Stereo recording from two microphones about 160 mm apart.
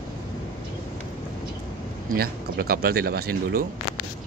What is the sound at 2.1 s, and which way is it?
Speech, 70° right (ahead or behind).